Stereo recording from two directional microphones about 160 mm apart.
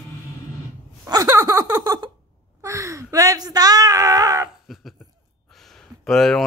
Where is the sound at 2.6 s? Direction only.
20° right (ahead or behind).